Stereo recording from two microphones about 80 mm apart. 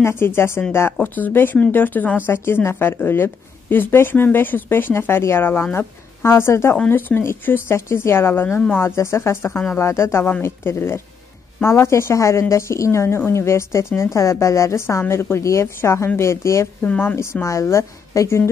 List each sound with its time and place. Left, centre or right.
0.0 s a woman's voice: left
16.8 s a woman's voice: left
17.1 s speech: left